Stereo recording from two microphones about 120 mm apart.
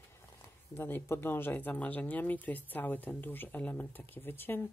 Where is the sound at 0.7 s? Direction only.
20° left (ahead or behind).